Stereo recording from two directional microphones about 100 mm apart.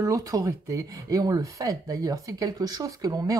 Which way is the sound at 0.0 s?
35° right (ahead or behind).